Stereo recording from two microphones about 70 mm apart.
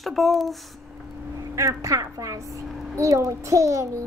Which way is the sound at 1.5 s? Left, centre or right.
Right.